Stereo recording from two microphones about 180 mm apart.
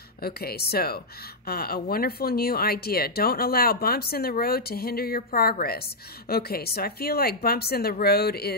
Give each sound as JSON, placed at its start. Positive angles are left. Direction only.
{"t": 0.2, "sound": "speech", "side_deg": 60}